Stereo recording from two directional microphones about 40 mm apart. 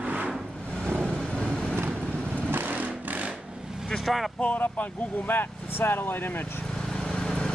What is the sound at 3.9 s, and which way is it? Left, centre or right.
Vehicle, centre.